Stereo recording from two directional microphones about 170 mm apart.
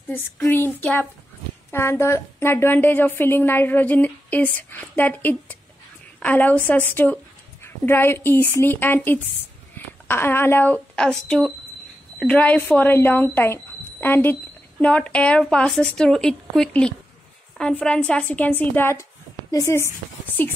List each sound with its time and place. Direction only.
0.1 s a woman's voice: 10° left (ahead or behind)